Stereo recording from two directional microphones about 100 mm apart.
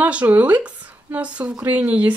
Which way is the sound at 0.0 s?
15° right (ahead or behind).